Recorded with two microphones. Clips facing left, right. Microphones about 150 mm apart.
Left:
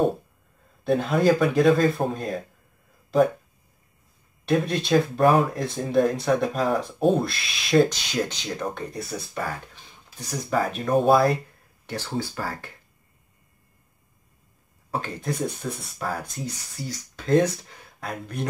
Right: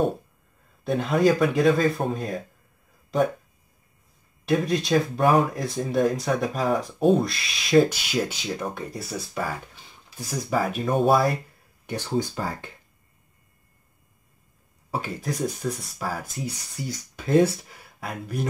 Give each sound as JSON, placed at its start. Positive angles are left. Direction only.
{"t": 0.8, "sound": "speech", "side_deg": 0}
{"t": 4.5, "sound": "speech", "side_deg": 0}
{"t": 11.8, "sound": "speech", "side_deg": -15}
{"t": 14.9, "sound": "speech", "side_deg": -10}